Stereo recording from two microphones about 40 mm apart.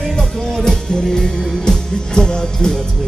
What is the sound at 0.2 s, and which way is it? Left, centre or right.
Music, centre.